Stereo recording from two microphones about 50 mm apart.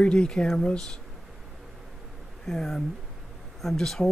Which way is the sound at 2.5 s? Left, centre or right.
Centre.